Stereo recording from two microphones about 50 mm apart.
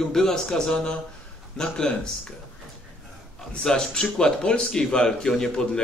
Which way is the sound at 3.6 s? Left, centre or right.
Centre.